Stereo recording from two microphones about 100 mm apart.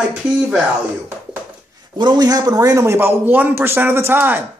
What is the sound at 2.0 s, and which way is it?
A man's voice, 45° right (ahead or behind).